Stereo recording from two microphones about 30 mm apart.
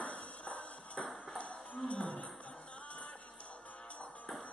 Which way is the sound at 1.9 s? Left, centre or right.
Left.